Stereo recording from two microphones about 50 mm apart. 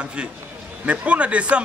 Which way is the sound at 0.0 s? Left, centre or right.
Right.